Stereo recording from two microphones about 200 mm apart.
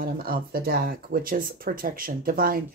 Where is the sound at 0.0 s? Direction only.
50° right (ahead or behind).